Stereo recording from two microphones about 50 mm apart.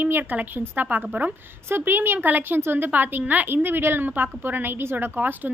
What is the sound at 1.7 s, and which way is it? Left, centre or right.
A woman's voice, right.